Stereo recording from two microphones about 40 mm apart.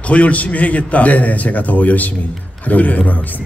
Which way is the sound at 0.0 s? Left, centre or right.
Left.